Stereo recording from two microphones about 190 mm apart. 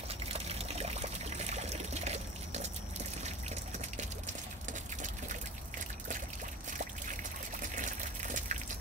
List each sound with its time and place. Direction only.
0.3 s pour: 30° right (ahead or behind)
7.6 s water: 40° right (ahead or behind)